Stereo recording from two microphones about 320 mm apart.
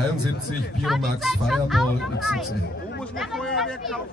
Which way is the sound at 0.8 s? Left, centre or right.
Centre.